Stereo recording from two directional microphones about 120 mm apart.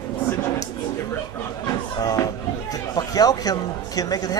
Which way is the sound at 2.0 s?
30° left (ahead or behind).